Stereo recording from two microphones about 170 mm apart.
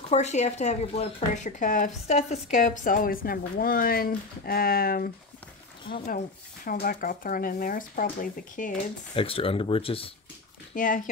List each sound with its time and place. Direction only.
0.1 s speech: 40° left (ahead or behind)
9.1 s speech: 35° left (ahead or behind)
10.7 s speech: 50° left (ahead or behind)